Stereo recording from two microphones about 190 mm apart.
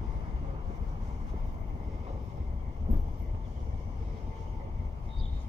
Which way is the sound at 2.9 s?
40° right (ahead or behind).